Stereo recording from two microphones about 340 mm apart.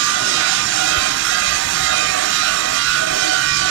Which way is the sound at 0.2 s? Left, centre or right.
Right.